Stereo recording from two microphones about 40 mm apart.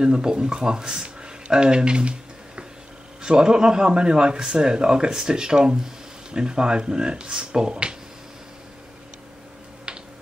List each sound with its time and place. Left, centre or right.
0.0 s a man's voice: centre